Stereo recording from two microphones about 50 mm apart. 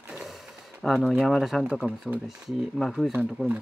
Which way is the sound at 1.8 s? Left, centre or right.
Centre.